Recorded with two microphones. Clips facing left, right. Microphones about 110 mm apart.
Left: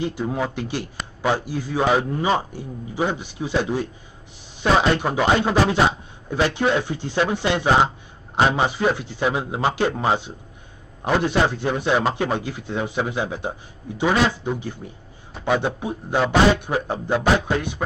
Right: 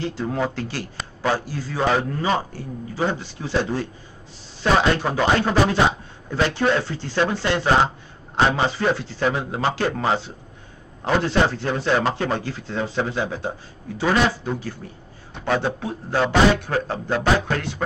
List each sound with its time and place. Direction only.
0.0 s a man's voice: 15° left (ahead or behind)